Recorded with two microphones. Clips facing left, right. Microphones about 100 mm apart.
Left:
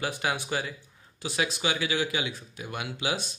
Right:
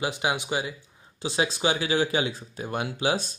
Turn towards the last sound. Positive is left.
turn(degrees=-35)  # may be behind; listen again after turning